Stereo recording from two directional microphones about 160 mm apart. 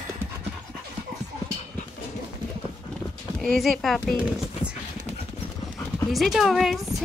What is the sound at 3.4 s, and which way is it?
Speech, centre (ahead or behind).